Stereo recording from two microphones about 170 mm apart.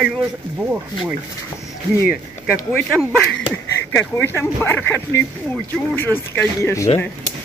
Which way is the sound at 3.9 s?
15° left (ahead or behind).